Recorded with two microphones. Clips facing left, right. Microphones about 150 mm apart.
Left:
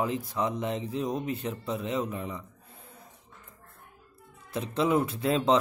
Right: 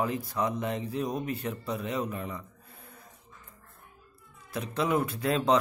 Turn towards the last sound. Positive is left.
turn(degrees=25)  # may be behind; listen again after turning